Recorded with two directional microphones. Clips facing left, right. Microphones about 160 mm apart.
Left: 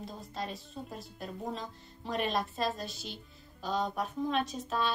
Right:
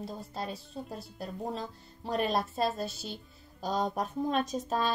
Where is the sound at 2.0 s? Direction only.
35° right (ahead or behind).